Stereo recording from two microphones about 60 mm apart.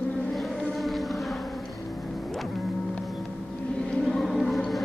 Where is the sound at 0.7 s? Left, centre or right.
Centre.